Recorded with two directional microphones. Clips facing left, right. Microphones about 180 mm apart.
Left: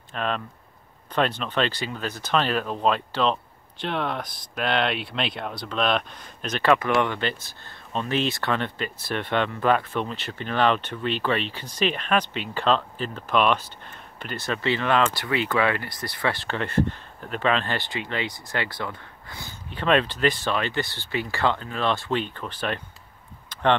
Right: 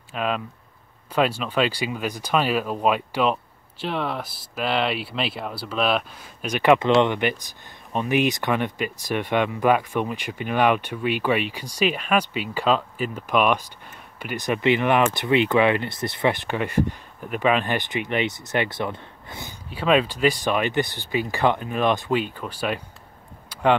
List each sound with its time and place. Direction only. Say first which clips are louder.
0.1 s speech: right 2 dB; 5° right (ahead or behind); by 19.5 s 20° right (ahead or behind)
19.7 s speech: right 2 dB; 5° right (ahead or behind)
23.5 s a sound: right 2 dB; 10° right (ahead or behind)